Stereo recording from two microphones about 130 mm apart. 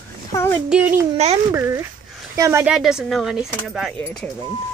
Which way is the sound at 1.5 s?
20° right (ahead or behind).